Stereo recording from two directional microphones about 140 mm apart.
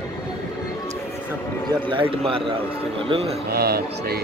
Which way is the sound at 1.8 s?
40° right (ahead or behind).